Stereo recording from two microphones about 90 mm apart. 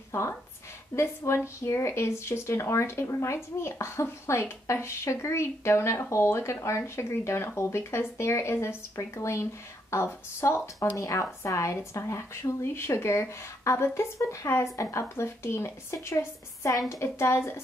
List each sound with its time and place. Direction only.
0.1 s a woman's voice: 30° left (ahead or behind)